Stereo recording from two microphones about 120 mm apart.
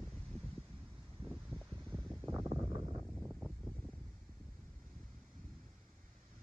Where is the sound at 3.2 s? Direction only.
5° right (ahead or behind).